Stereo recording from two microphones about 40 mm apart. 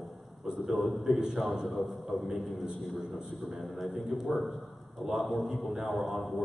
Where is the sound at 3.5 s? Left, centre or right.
Centre.